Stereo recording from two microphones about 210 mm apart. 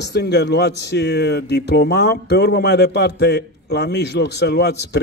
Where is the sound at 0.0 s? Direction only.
50° left (ahead or behind).